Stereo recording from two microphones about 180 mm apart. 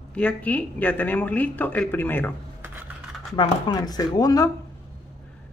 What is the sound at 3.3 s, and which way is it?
Speech, 25° left (ahead or behind).